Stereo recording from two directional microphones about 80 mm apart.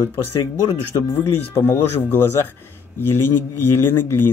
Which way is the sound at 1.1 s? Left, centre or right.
Left.